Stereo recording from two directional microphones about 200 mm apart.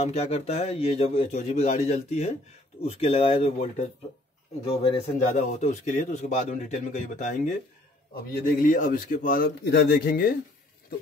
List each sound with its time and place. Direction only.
0.0 s a man's voice: 30° left (ahead or behind)
5.0 s a man's voice: 35° left (ahead or behind)
8.5 s a man's voice: 40° left (ahead or behind)